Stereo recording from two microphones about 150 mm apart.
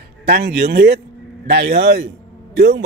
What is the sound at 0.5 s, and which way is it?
Speech, 90° right.